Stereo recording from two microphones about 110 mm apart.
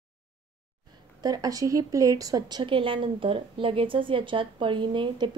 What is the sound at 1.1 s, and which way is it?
A woman's voice, 35° right (ahead or behind).